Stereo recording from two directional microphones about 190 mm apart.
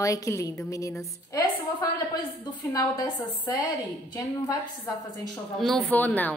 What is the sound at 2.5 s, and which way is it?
A woman's voice, 20° left (ahead or behind).